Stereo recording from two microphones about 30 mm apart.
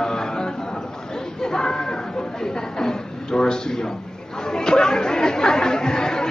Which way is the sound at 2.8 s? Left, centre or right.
Left.